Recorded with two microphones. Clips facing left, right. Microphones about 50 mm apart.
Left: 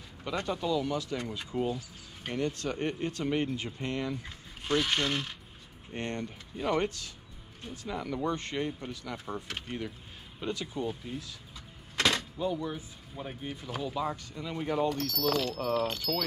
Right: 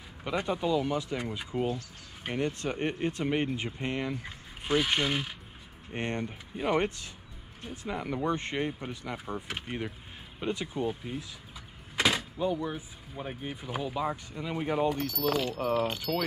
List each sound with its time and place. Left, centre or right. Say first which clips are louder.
0.2 s speech: right 2 dB; centre
5.9 s speech: right 2 dB; right